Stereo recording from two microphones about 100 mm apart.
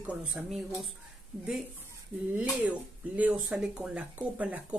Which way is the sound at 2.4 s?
15° right (ahead or behind).